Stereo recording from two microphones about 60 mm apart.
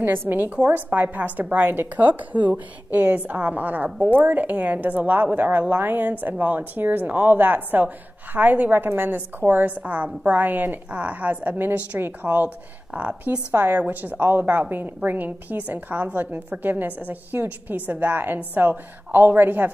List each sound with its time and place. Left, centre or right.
0.0 s a woman's voice: right